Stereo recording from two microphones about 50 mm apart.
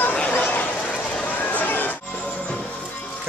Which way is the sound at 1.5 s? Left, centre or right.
Left.